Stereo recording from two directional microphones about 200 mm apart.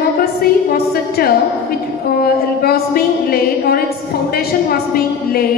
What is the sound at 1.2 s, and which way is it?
A woman's voice, 50° left (ahead or behind).